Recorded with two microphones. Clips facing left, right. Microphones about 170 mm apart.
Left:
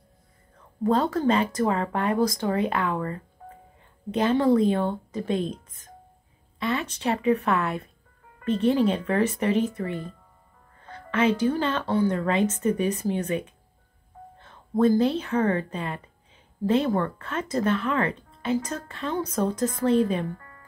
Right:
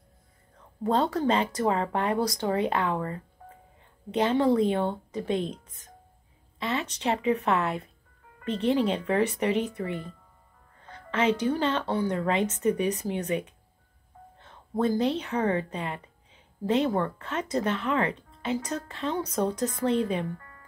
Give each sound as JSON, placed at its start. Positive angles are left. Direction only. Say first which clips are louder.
{"t": 0.8, "sound": "speech", "louder": "left 2 dB", "side_deg": -25}
{"t": 6.6, "sound": "speech", "louder": "left 2 dB", "side_deg": -20}
{"t": 14.5, "sound": "speech", "louder": "left 6 dB", "side_deg": -20}